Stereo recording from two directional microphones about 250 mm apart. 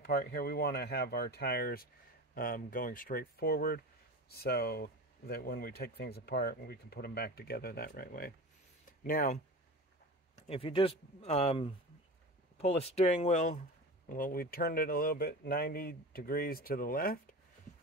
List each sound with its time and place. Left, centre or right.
0.0 s speech: left
10.3 s speech: left